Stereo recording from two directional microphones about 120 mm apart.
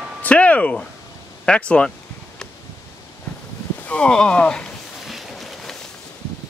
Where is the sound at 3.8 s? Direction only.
10° left (ahead or behind).